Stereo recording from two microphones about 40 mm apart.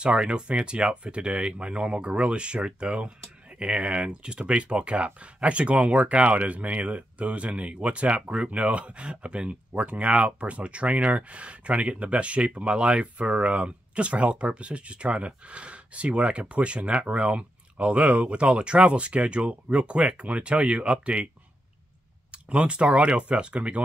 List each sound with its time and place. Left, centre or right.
0.0 s speech: right
22.3 s speech: right